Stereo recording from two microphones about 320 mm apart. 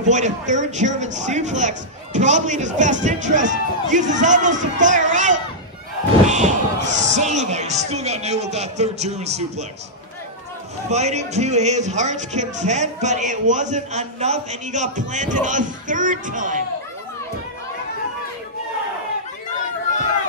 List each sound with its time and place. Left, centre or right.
0.0 s speech: right
10.9 s speech: right